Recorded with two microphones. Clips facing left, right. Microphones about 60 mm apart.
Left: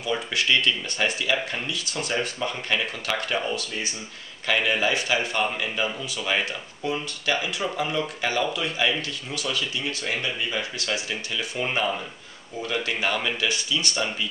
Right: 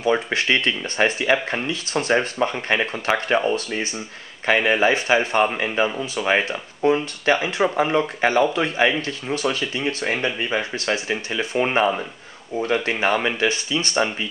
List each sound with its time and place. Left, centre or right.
0.0 s speech: right